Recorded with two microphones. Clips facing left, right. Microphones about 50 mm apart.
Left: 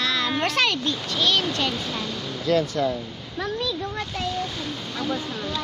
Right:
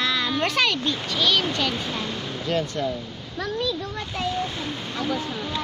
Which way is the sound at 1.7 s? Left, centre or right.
Centre.